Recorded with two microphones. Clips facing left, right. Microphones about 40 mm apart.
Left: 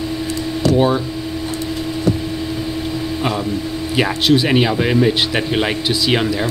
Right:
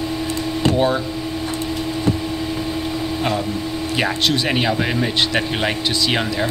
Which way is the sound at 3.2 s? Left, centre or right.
Centre.